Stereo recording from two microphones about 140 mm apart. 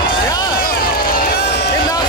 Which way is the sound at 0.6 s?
90° left.